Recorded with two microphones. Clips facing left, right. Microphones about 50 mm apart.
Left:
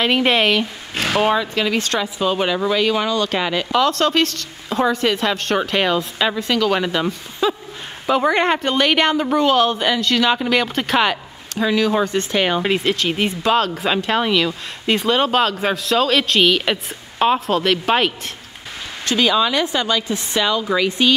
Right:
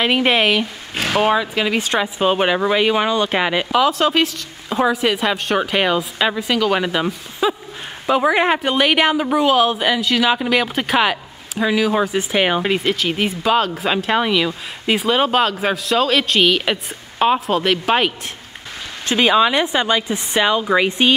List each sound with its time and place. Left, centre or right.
0.0 s speech: centre
2.1 s a woman's voice: right
3.8 s speech: centre
12.6 s speech: centre
19.0 s a woman's voice: right